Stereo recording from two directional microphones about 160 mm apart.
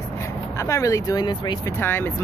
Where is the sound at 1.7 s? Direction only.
15° left (ahead or behind).